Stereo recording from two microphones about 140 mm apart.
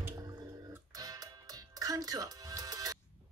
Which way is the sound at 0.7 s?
25° right (ahead or behind).